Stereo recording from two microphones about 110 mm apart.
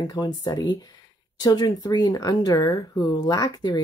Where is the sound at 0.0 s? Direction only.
35° left (ahead or behind).